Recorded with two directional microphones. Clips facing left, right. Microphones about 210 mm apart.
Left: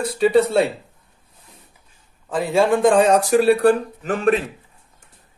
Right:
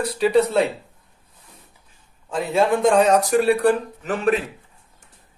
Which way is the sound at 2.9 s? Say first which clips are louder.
Left 1 dB; 30° left (ahead or behind).